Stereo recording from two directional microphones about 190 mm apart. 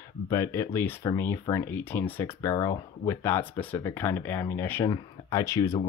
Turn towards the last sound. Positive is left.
turn(degrees=15)  # may be behind; listen again after turning